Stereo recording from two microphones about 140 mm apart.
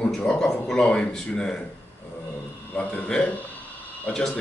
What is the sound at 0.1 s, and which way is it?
A man's voice, 5° left (ahead or behind).